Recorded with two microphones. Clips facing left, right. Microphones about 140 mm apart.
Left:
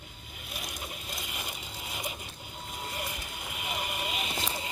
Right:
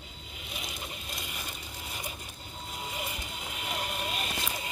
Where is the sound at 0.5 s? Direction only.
Centre (ahead or behind).